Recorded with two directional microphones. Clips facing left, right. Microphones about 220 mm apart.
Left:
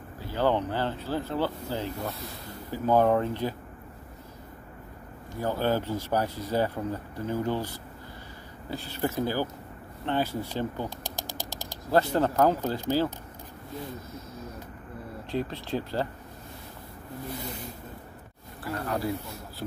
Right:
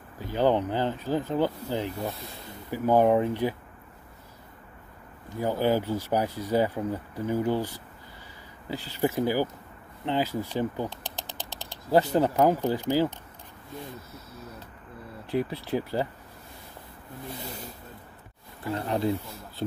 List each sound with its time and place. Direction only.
0.2 s speech: 15° right (ahead or behind)
5.4 s speech: 15° right (ahead or behind)
10.9 s speech: 10° left (ahead or behind)
11.3 s mechanisms: 10° left (ahead or behind)
11.9 s speech: 15° right (ahead or behind)
15.3 s speech: 10° right (ahead or behind)
18.6 s speech: 20° right (ahead or behind)